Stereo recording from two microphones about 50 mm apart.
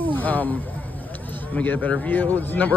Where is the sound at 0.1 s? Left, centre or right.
Left.